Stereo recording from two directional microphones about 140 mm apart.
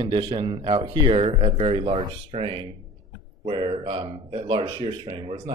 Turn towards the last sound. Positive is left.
turn(degrees=-40)  # may be behind; listen again after turning